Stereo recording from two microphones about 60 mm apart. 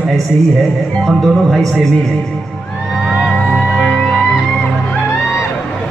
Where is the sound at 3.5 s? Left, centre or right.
Centre.